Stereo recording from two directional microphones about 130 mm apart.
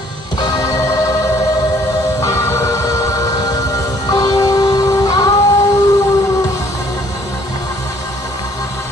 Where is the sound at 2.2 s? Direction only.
20° left (ahead or behind).